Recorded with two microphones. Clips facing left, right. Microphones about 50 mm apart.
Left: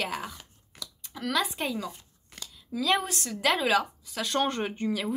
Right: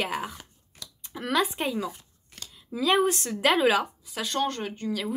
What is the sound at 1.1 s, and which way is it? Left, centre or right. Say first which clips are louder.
Speech: right 3 dB; right.